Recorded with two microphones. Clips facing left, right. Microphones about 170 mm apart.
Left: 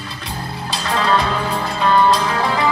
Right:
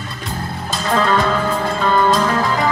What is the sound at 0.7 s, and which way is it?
Music, 50° right (ahead or behind).